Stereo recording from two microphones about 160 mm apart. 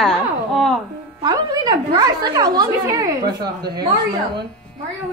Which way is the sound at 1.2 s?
25° right (ahead or behind).